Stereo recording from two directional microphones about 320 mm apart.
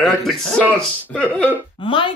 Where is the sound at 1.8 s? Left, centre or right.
Centre.